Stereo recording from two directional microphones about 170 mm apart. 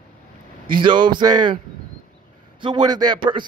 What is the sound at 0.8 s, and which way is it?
Speech, 30° right (ahead or behind).